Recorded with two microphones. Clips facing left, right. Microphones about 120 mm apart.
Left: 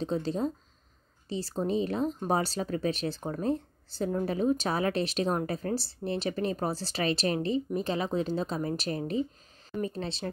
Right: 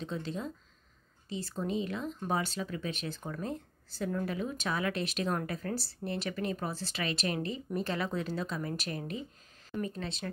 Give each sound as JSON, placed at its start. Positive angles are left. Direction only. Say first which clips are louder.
{"t": 0.0, "sound": "speech", "louder": "left 7 dB", "side_deg": 35}